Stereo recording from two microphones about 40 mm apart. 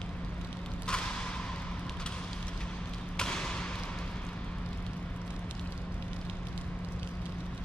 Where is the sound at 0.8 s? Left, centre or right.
Centre.